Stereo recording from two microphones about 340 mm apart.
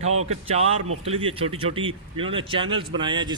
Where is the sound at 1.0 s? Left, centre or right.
Centre.